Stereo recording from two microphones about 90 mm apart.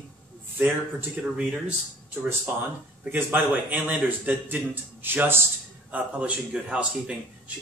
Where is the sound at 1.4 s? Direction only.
10° right (ahead or behind).